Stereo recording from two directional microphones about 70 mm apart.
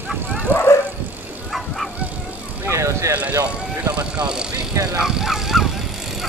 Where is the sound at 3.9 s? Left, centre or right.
Centre.